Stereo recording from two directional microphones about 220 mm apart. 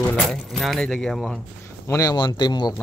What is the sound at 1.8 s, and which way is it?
Speech, 15° left (ahead or behind).